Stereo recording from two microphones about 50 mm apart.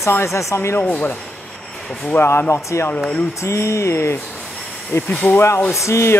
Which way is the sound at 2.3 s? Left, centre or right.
Left.